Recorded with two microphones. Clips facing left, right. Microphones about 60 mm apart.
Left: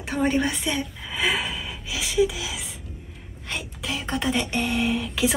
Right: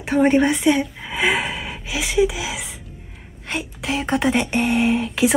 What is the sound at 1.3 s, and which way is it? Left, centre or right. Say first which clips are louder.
Speech: right 5 dB; right.